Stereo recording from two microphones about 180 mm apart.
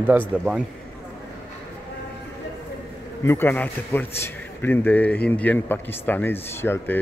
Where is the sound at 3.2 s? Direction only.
10° left (ahead or behind).